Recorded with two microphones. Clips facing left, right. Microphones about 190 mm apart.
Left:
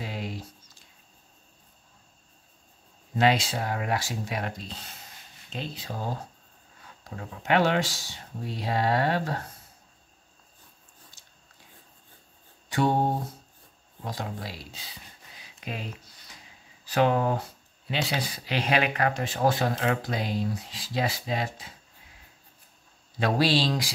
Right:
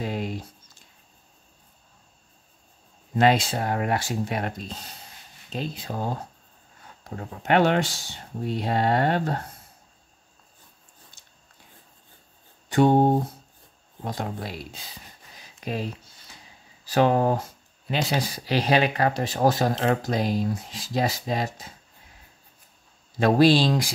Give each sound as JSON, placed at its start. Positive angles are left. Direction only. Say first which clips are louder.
{"t": 0.0, "sound": "a sound", "louder": "right 6 dB", "side_deg": -50}
{"t": 3.2, "sound": "speech", "louder": "right 3 dB", "side_deg": -50}
{"t": 7.4, "sound": "speech", "louder": "right 3 dB", "side_deg": -55}
{"t": 12.6, "sound": "a sound", "louder": "right 6 dB", "side_deg": -50}
{"t": 14.0, "sound": "speech", "louder": "right 4 dB", "side_deg": -55}
{"t": 15.6, "sound": "speech", "louder": "right 6 dB", "side_deg": -40}
{"t": 23.1, "sound": "speech", "louder": "right 6 dB", "side_deg": -45}